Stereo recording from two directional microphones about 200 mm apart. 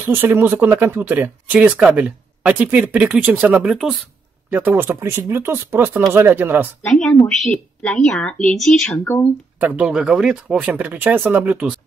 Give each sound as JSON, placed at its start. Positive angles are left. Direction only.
{"t": 0.0, "sound": "speech", "side_deg": -10}
{"t": 6.8, "sound": "a woman's voice", "side_deg": 5}
{"t": 9.6, "sound": "speech", "side_deg": -5}